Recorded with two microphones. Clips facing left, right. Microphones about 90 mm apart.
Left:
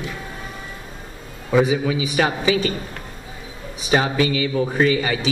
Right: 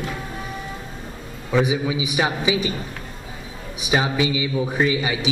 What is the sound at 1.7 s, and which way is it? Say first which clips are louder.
Speech: left 2 dB; 15° right (ahead or behind).